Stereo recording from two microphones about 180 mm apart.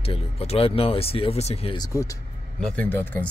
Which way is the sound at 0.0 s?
35° left (ahead or behind).